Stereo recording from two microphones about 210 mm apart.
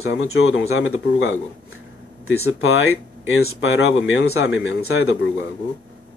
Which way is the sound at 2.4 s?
75° left (ahead or behind).